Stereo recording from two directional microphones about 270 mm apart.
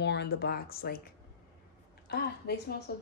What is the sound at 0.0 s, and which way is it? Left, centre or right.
Speech, left.